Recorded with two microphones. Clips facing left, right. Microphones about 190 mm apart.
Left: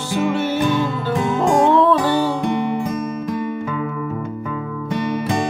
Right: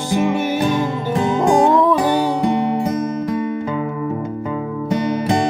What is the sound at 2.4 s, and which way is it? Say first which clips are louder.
Music: right 3 dB; 40° right (ahead or behind).